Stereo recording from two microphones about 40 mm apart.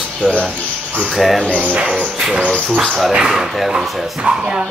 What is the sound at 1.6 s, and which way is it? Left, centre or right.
Bird, right.